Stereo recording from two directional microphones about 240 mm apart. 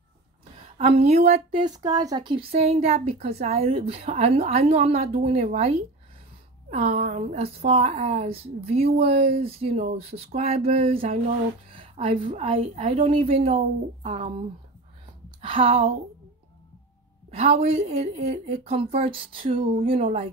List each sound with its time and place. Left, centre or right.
0.9 s speech: right
15.4 s speech: right
17.3 s speech: right